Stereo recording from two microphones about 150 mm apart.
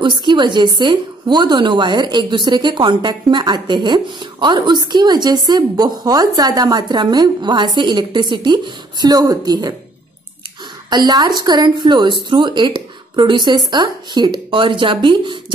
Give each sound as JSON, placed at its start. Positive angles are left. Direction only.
{"t": 0.0, "sound": "a woman's voice", "side_deg": -30}
{"t": 10.9, "sound": "a woman's voice", "side_deg": -25}